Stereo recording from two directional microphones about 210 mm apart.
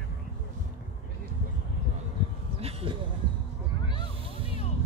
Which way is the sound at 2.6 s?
30° right (ahead or behind).